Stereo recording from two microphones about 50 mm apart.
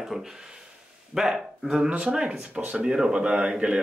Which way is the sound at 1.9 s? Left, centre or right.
Right.